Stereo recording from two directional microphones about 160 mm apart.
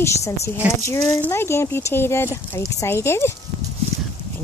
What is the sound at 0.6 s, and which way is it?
Speech, 10° right (ahead or behind).